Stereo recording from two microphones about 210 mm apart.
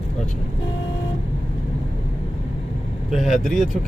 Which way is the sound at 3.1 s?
Centre (ahead or behind).